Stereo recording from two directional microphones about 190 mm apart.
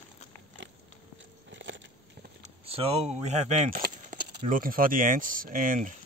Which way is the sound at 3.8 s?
50° right (ahead or behind).